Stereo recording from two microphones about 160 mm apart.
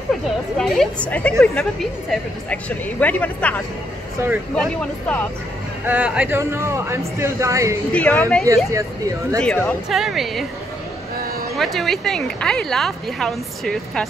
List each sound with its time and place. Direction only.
0.6 s speech: 5° left (ahead or behind)
4.2 s speech: 15° right (ahead or behind)
4.6 s speech: 10° left (ahead or behind)
5.9 s speech: 10° right (ahead or behind)
7.9 s speech: 10° left (ahead or behind)
8.7 s speech: 20° right (ahead or behind)
9.4 s speech: 5° left (ahead or behind)
11.5 s speech: centre (ahead or behind)